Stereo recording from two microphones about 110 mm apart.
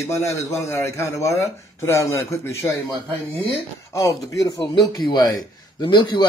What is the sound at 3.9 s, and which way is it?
A man's voice, 30° left (ahead or behind).